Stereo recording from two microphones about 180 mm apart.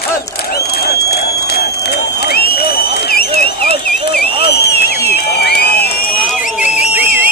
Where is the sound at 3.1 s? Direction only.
60° left (ahead or behind).